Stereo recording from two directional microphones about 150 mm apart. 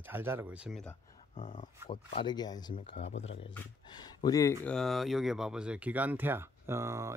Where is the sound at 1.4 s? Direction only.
55° left (ahead or behind).